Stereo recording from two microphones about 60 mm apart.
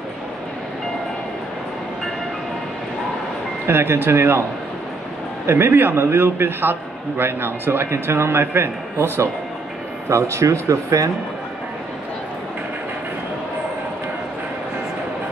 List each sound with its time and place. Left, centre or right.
3.6 s speech: right
5.5 s a man's voice: right
10.0 s speech: right